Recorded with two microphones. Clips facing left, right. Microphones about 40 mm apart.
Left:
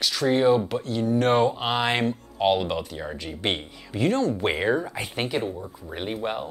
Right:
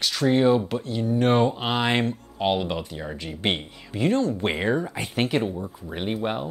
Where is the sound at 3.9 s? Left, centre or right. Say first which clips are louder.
Right 1 dB; right.